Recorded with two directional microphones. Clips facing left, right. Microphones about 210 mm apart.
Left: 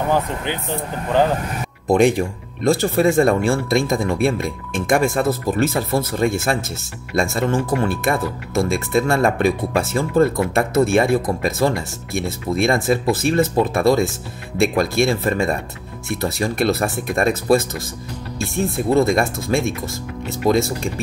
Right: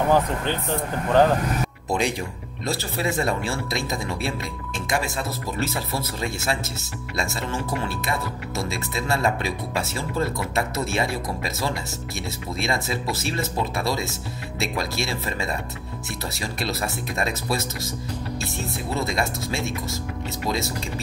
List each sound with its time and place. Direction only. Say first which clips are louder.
1.9 s speech: left 11 dB; 50° left (ahead or behind)